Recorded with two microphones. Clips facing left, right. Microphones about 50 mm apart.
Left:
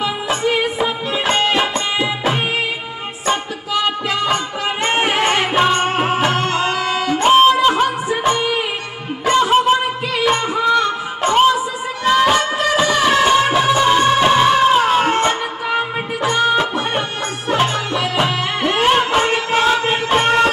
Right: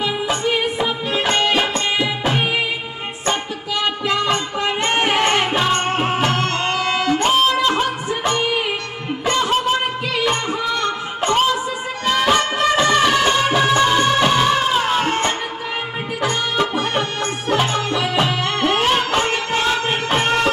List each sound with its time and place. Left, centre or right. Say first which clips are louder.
0.0 s music of bollywood: left 1 dB; centre
1.5 s music: left 1 dB; centre
4.6 s music: left 1 dB; centre
6.6 s music: left 1 dB; centre